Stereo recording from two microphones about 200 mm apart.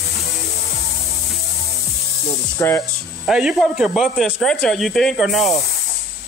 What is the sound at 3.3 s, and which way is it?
Speech, 5° right (ahead or behind).